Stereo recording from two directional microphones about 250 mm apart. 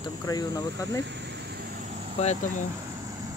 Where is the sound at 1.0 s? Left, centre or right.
Right.